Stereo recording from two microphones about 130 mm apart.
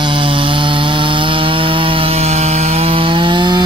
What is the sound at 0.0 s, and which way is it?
Chainsaw, 40° right (ahead or behind).